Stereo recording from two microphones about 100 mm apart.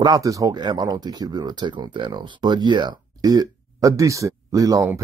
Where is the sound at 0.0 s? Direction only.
35° right (ahead or behind).